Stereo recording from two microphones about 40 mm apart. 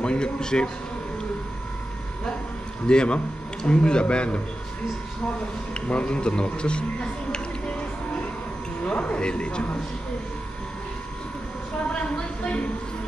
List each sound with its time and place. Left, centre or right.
0.0 s speech: left
2.9 s speech: left
5.8 s a man's voice: left
11.9 s speech: left